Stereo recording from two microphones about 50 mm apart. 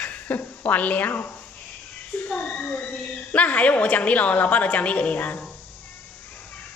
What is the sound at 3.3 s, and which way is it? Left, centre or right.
A woman's voice, left.